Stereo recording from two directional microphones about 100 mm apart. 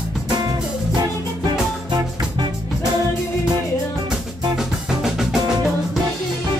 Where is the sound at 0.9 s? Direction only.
45° right (ahead or behind).